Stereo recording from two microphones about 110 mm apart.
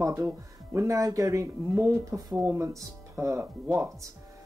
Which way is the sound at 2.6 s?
25° right (ahead or behind).